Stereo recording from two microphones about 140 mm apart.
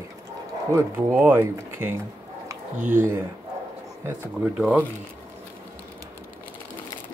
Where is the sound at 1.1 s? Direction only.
15° right (ahead or behind).